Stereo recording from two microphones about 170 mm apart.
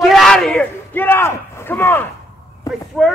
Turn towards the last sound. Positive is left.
turn(degrees=0)  # may be behind; listen again after turning